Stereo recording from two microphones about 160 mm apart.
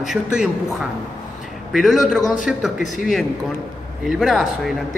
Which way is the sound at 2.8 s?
50° left (ahead or behind).